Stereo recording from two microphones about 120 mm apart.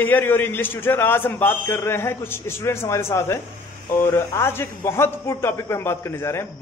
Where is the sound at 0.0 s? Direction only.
15° left (ahead or behind).